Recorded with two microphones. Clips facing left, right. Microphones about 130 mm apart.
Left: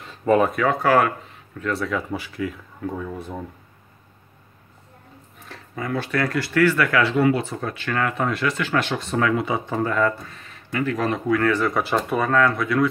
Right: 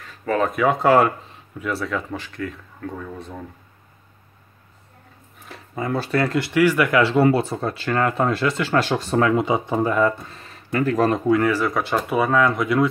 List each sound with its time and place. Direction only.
0.0 s a sound: 25° left (ahead or behind)
0.7 s speech: 25° right (ahead or behind)
1.6 s speech: centre (ahead or behind)
5.8 s speech: 35° right (ahead or behind); by 7.0 s 15° right (ahead or behind)
7.0 s speech: 30° right (ahead or behind)
9.3 s speech: 20° right (ahead or behind)
10.7 s speech: 40° right (ahead or behind)
11.4 s speech: 5° right (ahead or behind); by 12.8 s 20° right (ahead or behind)